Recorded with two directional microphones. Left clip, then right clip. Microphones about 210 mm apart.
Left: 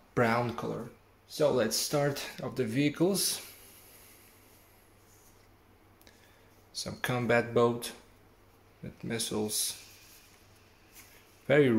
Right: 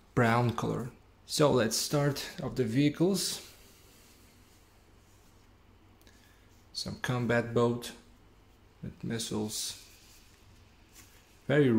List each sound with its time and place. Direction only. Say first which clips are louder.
0.1 s speech: even; 10° right (ahead or behind)
6.7 s speech: left 2 dB; centre (ahead or behind)
11.4 s speech: left 2 dB; centre (ahead or behind)